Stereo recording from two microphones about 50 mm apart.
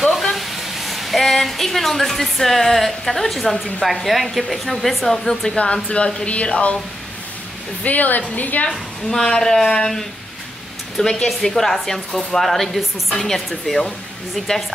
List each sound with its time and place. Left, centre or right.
0.0 s speech: centre
5.6 s speech: left
7.8 s speech: left
8.6 s a woman's voice: centre
11.2 s a woman's voice: centre